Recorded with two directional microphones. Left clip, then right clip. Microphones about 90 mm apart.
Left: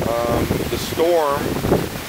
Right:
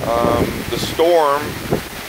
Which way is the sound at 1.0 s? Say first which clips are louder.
Right 4 dB; 20° left (ahead or behind).